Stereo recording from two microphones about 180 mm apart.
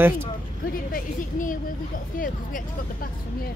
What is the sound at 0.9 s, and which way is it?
A woman's voice, 45° left (ahead or behind).